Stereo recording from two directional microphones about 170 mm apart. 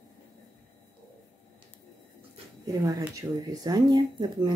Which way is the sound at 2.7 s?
20° right (ahead or behind).